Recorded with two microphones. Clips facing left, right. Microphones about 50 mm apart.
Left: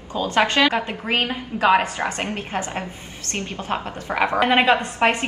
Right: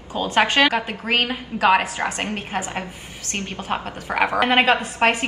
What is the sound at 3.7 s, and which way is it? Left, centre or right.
Speech, centre.